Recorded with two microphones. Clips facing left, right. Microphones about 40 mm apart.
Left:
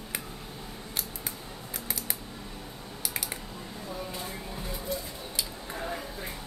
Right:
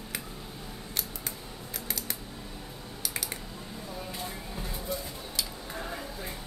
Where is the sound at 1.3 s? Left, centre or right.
Centre.